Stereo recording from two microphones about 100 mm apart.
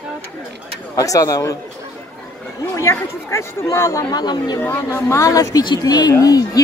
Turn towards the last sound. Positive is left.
turn(degrees=35)  # may be behind; listen again after turning